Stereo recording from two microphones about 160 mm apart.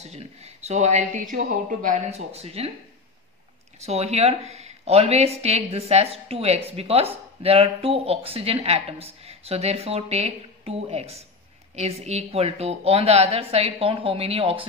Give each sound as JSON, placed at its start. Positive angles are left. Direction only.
{"t": 0.0, "sound": "speech", "side_deg": -40}
{"t": 3.8, "sound": "speech", "side_deg": -40}